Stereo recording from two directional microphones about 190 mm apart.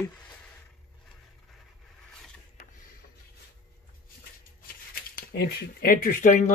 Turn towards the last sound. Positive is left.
turn(degrees=40)  # may be behind; listen again after turning